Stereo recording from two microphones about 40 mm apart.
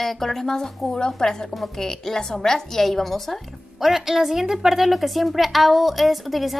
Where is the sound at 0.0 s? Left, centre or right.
Centre.